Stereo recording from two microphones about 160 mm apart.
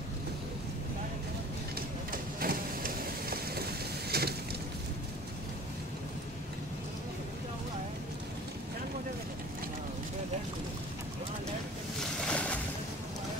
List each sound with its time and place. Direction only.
2.4 s vehicle: 65° right (ahead or behind)
4.1 s vehicle: 80° right
12.3 s boat: 10° left (ahead or behind)